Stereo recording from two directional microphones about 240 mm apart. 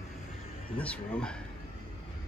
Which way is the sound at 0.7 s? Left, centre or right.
Centre.